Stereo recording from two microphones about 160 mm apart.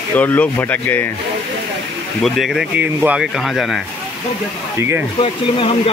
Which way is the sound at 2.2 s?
Centre (ahead or behind).